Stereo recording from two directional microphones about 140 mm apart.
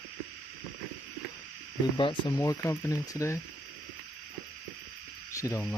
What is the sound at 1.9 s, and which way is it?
Speech, 35° left (ahead or behind).